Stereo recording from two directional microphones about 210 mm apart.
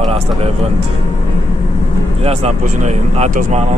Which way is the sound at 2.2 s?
30° right (ahead or behind).